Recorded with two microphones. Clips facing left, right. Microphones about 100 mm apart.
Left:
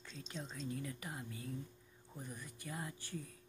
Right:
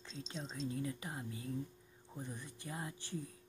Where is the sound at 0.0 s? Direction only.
25° right (ahead or behind).